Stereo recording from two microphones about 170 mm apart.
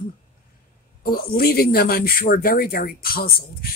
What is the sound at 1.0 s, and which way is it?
Speech, 60° left (ahead or behind).